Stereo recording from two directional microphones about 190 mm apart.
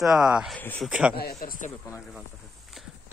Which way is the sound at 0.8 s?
5° right (ahead or behind).